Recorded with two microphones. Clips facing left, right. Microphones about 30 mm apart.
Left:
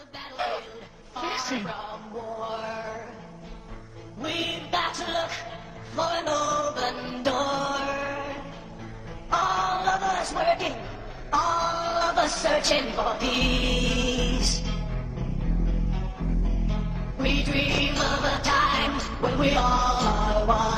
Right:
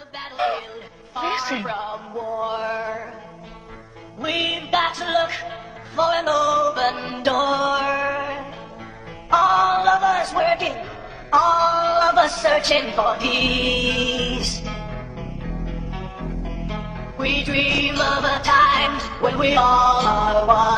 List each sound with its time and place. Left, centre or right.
0.4 s music: right
1.1 s speech: right
4.2 s music: right
10.4 s a sound: right
10.8 s music: right
14.5 s music: centre
15.0 s music: right